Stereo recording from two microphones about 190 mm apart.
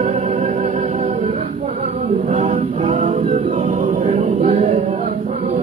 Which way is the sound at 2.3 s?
40° right (ahead or behind).